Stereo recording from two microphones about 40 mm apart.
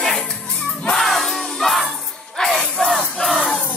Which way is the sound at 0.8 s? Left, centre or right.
Centre.